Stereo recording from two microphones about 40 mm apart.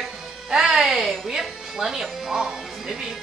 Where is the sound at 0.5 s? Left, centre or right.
Centre.